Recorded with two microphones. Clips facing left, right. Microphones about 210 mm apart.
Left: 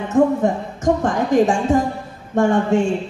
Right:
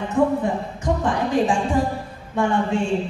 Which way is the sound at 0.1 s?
45° left (ahead or behind).